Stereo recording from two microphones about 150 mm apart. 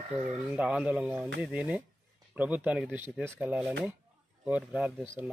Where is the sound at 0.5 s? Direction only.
5° right (ahead or behind).